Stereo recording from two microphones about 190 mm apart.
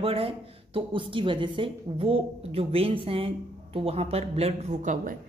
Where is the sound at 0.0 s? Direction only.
30° right (ahead or behind).